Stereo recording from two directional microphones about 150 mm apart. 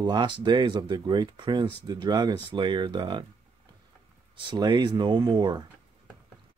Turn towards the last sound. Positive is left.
turn(degrees=-30)  # may be behind; listen again after turning